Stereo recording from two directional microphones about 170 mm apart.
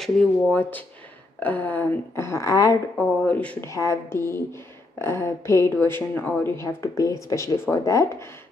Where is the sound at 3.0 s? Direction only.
10° left (ahead or behind).